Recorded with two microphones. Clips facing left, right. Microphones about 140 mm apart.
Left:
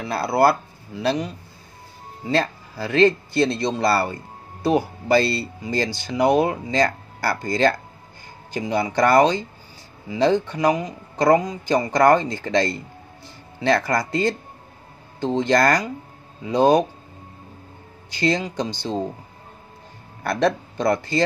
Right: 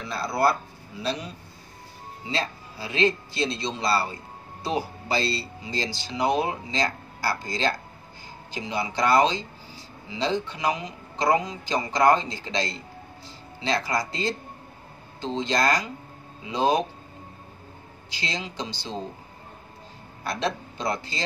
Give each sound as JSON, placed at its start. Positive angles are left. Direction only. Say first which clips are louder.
{"t": 0.0, "sound": "speech", "louder": "left 6 dB", "side_deg": 65}
{"t": 2.2, "sound": "speech", "louder": "left 8 dB", "side_deg": 55}
{"t": 18.1, "sound": "speech", "louder": "left 11 dB", "side_deg": 55}
{"t": 20.2, "sound": "speech", "louder": "left 8 dB", "side_deg": 55}